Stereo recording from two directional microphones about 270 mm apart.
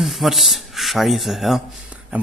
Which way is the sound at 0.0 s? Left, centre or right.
Centre.